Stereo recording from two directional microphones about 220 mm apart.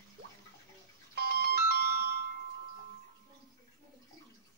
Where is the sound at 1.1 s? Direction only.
45° right (ahead or behind).